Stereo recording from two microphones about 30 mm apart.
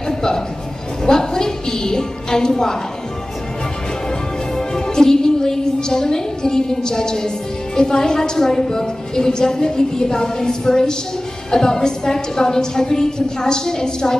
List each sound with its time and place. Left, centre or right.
0.1 s a sound: centre
1.0 s a woman's voice: left
4.6 s a woman's voice: centre